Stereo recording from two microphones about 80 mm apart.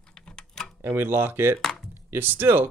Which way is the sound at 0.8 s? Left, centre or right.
Right.